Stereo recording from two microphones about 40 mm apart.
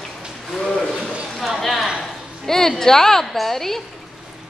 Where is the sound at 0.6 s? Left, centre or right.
Left.